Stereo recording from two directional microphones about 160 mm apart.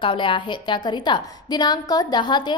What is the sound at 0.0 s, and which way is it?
A woman's voice, 30° left (ahead or behind).